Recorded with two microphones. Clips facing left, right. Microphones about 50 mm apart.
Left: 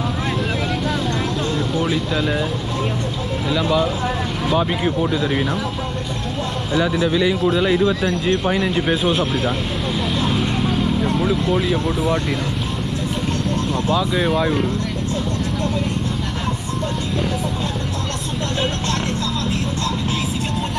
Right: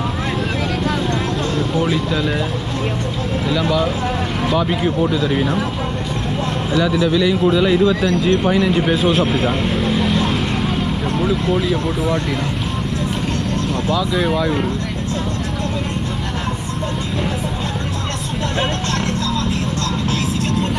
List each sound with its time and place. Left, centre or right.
1.8 s a man's voice: centre
3.4 s a man's voice: centre
7.1 s speech: left
8.5 s a man's voice: centre
11.1 s vehicle: centre
14.1 s a man's voice: centre